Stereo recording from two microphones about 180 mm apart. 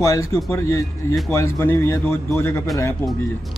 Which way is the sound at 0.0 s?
20° left (ahead or behind).